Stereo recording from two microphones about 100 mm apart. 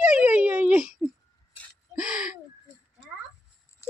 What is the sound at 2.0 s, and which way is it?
Speech, 10° right (ahead or behind).